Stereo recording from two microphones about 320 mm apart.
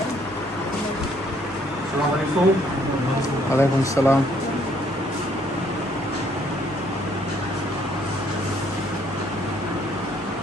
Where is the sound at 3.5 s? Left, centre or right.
Centre.